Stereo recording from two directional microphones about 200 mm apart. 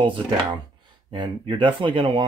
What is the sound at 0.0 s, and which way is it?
Speech, 25° right (ahead or behind).